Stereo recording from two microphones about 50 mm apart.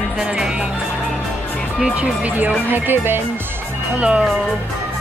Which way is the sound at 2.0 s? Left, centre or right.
Right.